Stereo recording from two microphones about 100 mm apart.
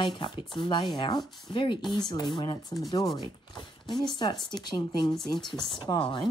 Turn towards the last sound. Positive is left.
turn(degrees=55)  # may be behind; listen again after turning